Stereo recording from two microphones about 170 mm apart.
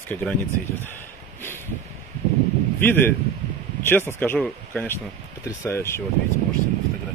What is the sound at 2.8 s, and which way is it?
Speech, 10° left (ahead or behind).